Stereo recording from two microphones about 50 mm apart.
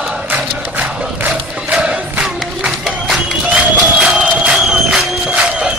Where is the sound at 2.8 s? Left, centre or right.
Centre.